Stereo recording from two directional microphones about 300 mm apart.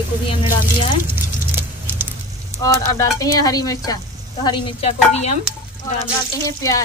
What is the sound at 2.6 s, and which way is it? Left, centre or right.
Speech, centre.